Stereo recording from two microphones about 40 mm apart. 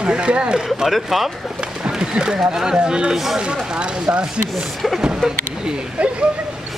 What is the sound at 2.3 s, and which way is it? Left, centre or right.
Speech, centre.